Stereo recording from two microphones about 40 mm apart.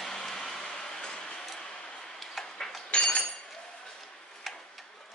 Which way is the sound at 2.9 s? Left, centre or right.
Left.